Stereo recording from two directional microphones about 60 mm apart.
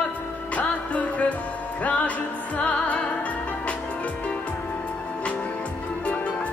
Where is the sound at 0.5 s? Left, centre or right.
Left.